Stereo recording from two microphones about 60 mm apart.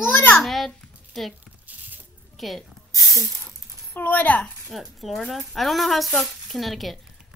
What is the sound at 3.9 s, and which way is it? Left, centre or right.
Speech, left.